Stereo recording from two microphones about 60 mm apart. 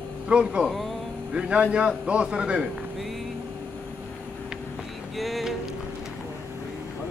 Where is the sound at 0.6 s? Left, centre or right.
Centre.